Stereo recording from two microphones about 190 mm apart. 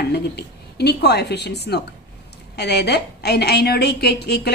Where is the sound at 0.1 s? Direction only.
60° left (ahead or behind).